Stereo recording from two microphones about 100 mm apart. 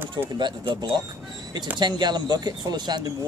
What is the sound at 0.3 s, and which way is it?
Speech, 50° right (ahead or behind).